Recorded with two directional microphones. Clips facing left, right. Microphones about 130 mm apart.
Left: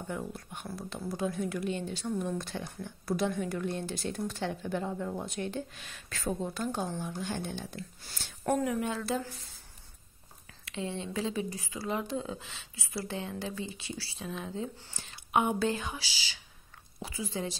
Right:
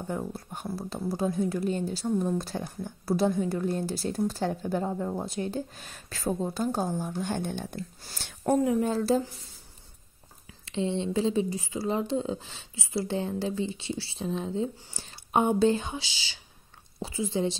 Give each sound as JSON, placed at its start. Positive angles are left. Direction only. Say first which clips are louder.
{"t": 0.0, "sound": "speech", "louder": "right 4 dB", "side_deg": -35}
{"t": 8.0, "sound": "speech", "louder": "right 4 dB", "side_deg": -35}
{"t": 10.6, "sound": "speech", "louder": "right 7 dB", "side_deg": -25}